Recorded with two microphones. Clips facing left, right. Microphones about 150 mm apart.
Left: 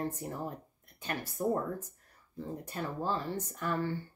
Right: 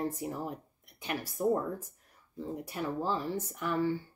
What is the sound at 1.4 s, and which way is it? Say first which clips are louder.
Speech: right 3 dB; 15° right (ahead or behind).